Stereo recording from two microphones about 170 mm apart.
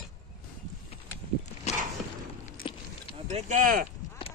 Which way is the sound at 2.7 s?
30° left (ahead or behind).